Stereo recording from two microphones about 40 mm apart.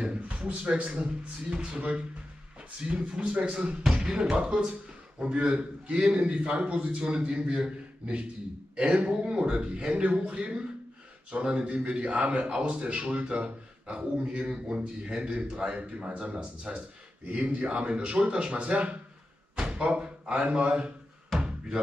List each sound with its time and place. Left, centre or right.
0.0 s a sound: right
1.0 s a man's voice: centre
1.7 s a man's voice: right
3.9 s a man's voice: centre
8.7 s a man's voice: right
17.3 s a man's voice: right
19.5 s speech: right
21.4 s knock: right